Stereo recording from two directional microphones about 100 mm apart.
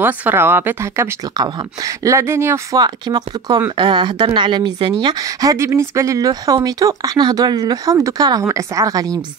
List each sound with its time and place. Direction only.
0.0 s speech: 20° right (ahead or behind)
2.0 s speech: 25° right (ahead or behind)
2.8 s a woman's voice: 45° right (ahead or behind)